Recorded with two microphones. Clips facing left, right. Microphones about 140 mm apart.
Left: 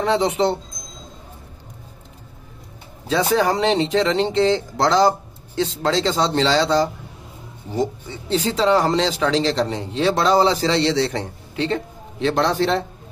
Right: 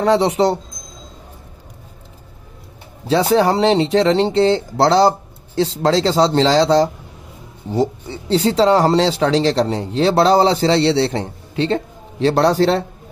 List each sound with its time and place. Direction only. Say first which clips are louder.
0.0 s speech: right 4 dB; 40° right (ahead or behind)
3.1 s speech: right 4 dB; 30° right (ahead or behind)